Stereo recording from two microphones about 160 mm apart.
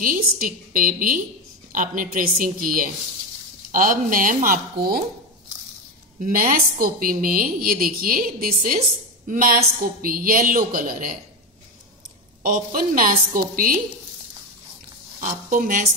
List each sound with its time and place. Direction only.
0.0 s a woman's voice: 60° right (ahead or behind)
6.2 s a woman's voice: 60° right (ahead or behind)
12.4 s a woman's voice: 60° right (ahead or behind)
15.5 s a woman's voice: 55° right (ahead or behind)